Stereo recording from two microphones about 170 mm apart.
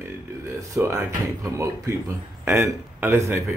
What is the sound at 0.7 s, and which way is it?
A man's voice, 15° right (ahead or behind).